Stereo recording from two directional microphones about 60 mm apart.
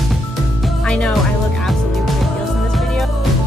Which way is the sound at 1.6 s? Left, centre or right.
Centre.